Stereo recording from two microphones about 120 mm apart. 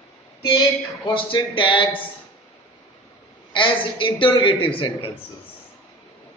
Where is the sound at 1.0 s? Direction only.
45° left (ahead or behind).